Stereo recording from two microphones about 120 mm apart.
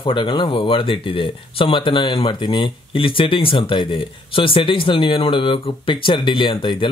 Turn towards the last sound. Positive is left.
turn(degrees=45)  # may be behind; listen again after turning